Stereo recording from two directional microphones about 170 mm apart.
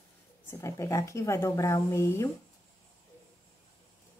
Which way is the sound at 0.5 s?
15° left (ahead or behind).